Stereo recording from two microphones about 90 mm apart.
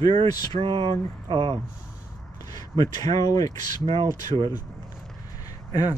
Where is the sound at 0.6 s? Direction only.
85° right; by 1.5 s 65° right (ahead or behind).